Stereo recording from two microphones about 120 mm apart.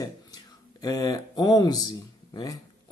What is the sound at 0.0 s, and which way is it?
A man's voice, 30° left (ahead or behind).